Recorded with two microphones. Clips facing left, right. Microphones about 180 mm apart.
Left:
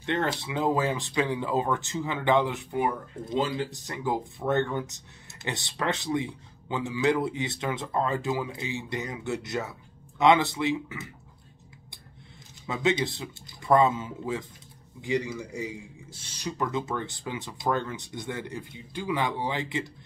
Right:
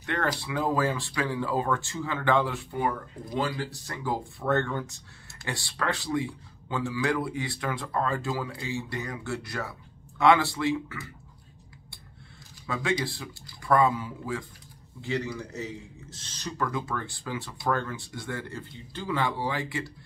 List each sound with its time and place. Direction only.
0.0 s speech: 25° left (ahead or behind)
12.6 s speech: 20° left (ahead or behind)